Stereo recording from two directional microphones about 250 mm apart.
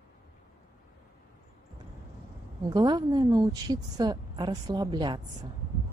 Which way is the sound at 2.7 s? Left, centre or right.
Centre.